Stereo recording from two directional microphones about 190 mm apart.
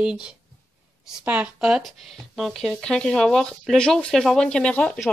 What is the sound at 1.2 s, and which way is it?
Speech, 5° right (ahead or behind).